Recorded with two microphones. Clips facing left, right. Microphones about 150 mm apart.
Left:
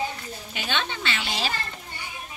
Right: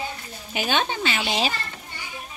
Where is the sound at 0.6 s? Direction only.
40° right (ahead or behind).